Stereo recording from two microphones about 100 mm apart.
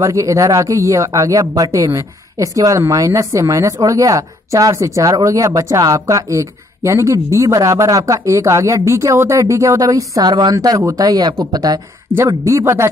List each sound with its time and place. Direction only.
0.0 s a woman's voice: 30° right (ahead or behind)
12.3 s speech: 30° right (ahead or behind)